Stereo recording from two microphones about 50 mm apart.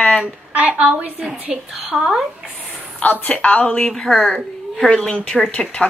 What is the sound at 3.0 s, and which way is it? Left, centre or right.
Speech, left.